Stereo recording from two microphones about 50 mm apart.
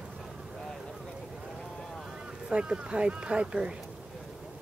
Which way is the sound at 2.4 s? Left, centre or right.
Centre.